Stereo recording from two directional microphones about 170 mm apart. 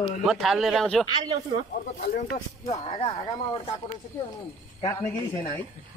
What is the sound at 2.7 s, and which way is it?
Speech, 30° left (ahead or behind).